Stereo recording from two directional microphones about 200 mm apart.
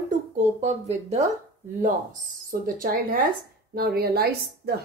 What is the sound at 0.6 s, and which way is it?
Speech, 35° right (ahead or behind).